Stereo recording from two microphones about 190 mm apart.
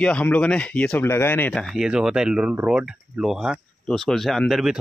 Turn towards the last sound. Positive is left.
turn(degrees=0)  # may be behind; listen again after turning